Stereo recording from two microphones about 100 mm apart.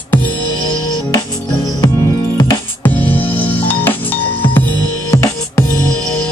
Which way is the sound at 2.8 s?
15° left (ahead or behind).